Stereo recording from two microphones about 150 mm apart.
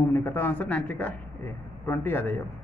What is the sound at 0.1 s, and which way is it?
Speech, 15° left (ahead or behind).